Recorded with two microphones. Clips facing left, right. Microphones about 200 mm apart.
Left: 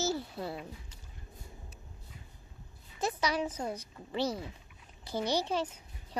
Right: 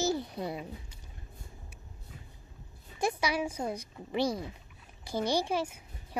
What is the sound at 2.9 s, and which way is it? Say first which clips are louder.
A woman's voice: right 2 dB; 10° right (ahead or behind).